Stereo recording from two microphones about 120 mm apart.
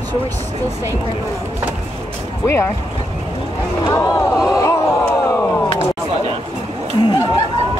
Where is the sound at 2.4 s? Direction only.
20° left (ahead or behind).